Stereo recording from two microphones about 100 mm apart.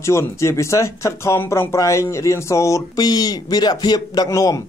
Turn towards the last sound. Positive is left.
turn(degrees=35)  # may be behind; listen again after turning